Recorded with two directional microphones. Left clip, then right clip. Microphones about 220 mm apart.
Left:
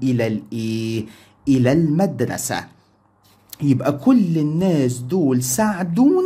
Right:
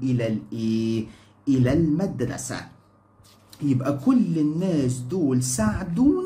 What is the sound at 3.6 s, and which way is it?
Speech, 45° left (ahead or behind).